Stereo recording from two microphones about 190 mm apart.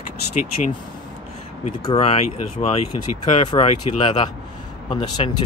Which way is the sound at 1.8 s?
30° left (ahead or behind).